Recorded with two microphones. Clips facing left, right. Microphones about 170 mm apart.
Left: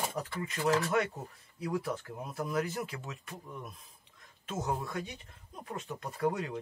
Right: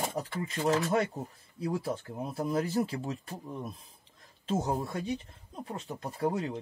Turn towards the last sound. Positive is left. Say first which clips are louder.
# right 1 dB
turn(degrees=-30)  # may be behind; listen again after turning